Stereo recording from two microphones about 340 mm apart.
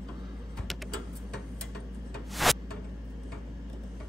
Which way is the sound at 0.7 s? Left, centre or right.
Centre.